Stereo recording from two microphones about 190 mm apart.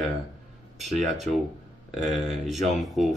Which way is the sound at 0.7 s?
Centre (ahead or behind).